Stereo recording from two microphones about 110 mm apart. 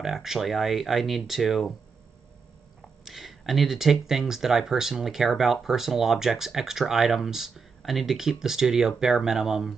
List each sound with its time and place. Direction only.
0.0 s speech: 5° right (ahead or behind)
3.1 s speech: centre (ahead or behind)